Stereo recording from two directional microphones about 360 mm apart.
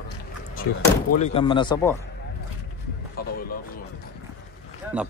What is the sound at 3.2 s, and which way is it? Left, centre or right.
Music, left.